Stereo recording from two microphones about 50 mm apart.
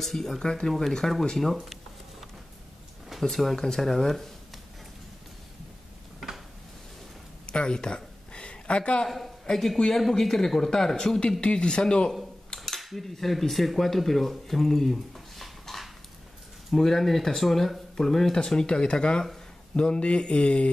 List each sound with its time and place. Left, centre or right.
0.0 s speech: centre
3.1 s speech: centre
7.4 s a sound: centre
9.5 s speech: centre
12.5 s speech: centre; by 20.7 s left